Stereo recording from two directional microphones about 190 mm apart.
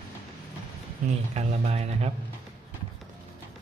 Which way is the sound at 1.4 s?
35° right (ahead or behind).